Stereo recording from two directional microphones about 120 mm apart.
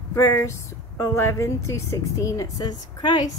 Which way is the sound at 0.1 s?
25° left (ahead or behind).